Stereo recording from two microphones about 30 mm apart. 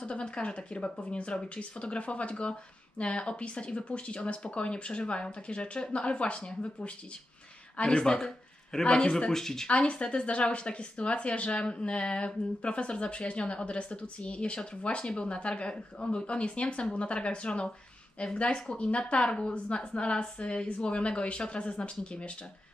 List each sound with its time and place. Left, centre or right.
0.0 s speech: left
7.8 s speech: left
8.8 s speech: left
9.3 s speech: centre
9.7 s speech: left
19.1 s speech: left
19.5 s speech: left